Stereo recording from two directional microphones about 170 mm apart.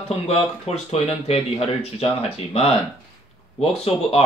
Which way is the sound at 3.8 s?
35° left (ahead or behind).